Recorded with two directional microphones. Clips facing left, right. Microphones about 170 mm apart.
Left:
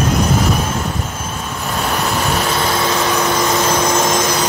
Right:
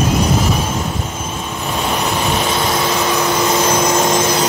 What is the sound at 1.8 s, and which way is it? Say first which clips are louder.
Vehicle: even; 10° right (ahead or behind).